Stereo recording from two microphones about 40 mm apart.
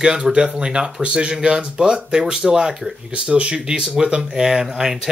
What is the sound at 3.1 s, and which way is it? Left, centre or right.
Speech, right.